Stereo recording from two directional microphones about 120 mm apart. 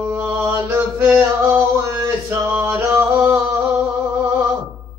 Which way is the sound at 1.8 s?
25° right (ahead or behind).